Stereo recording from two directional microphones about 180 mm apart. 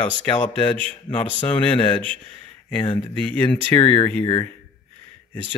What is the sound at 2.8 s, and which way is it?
Speech, 25° left (ahead or behind).